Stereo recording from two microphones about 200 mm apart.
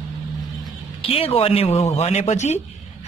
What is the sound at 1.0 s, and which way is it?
A man's voice, 30° left (ahead or behind).